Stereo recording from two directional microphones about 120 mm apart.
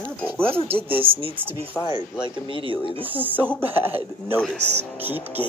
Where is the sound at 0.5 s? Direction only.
55° right (ahead or behind).